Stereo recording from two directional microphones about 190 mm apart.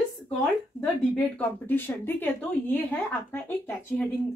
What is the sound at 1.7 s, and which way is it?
Speech, 10° left (ahead or behind).